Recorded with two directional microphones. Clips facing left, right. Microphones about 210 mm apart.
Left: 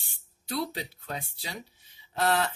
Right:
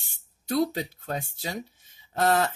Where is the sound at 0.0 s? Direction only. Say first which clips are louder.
Right 2 dB; 45° right (ahead or behind).